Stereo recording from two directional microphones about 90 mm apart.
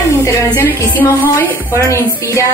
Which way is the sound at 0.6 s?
25° left (ahead or behind).